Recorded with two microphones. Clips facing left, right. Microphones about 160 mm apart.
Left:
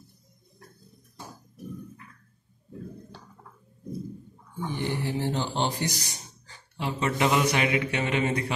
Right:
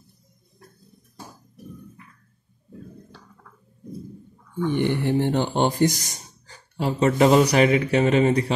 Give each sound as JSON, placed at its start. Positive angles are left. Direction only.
{"t": 4.6, "sound": "speech", "side_deg": -60}